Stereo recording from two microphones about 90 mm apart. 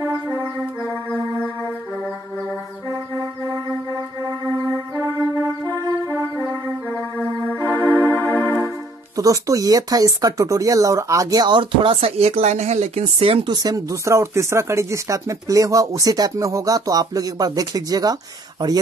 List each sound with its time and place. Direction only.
7.2 s music: 20° left (ahead or behind)
9.1 s speech: 40° right (ahead or behind); by 13.5 s 90° right
13.5 s speech: 45° right (ahead or behind)